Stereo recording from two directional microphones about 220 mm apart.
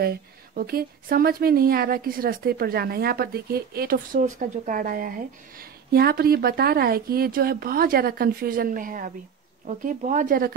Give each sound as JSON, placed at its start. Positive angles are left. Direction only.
{"t": 0.0, "sound": "a woman's voice", "side_deg": -45}